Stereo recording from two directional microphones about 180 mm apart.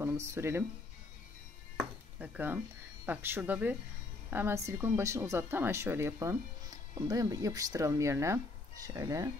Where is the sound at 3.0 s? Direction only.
10° right (ahead or behind).